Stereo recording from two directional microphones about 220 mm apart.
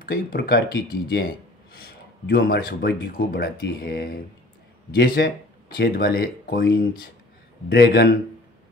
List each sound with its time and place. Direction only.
0.0 s speech: 45° left (ahead or behind)